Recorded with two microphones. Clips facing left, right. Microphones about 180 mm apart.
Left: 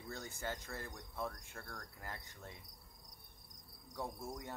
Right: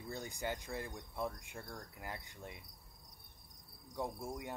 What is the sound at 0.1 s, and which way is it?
Speech, 15° right (ahead or behind).